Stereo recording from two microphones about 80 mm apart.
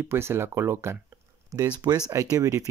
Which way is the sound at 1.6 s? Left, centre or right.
Right.